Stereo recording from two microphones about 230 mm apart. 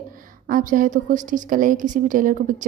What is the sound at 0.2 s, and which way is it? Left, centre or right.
A woman's voice, right.